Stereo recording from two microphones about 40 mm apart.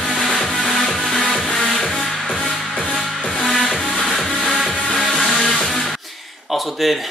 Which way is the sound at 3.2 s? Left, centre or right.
Centre.